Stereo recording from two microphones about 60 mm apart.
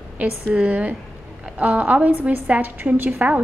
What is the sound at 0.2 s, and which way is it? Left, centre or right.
A woman's voice, right.